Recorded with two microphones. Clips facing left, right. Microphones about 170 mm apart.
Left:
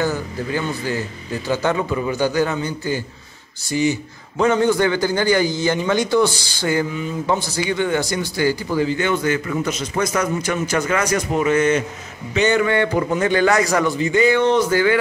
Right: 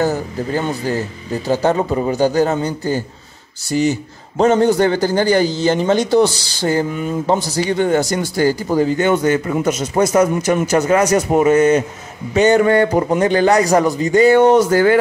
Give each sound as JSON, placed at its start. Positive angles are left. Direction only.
{"t": 0.0, "sound": "a man's voice", "side_deg": -40}
{"t": 4.4, "sound": "a man's voice", "side_deg": -40}